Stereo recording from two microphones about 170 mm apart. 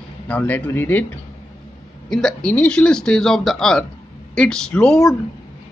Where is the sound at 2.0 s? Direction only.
5° left (ahead or behind).